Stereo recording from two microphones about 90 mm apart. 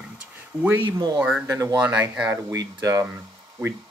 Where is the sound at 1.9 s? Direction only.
15° right (ahead or behind).